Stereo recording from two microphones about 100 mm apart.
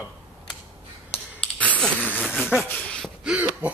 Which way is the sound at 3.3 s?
15° right (ahead or behind).